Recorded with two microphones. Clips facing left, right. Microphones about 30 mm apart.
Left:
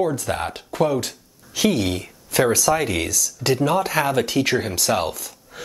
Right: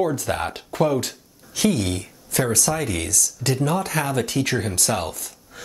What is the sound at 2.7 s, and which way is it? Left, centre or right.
Speech, left.